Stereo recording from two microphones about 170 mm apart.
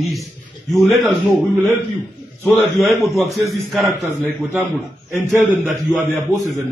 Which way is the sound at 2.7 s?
Centre (ahead or behind).